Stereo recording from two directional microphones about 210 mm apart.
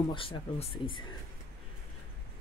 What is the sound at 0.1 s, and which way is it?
Speech, 25° left (ahead or behind).